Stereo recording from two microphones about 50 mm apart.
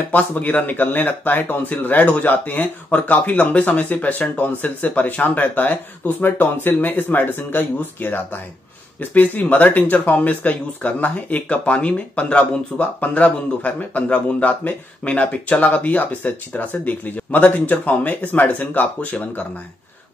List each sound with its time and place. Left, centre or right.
0.1 s speech: left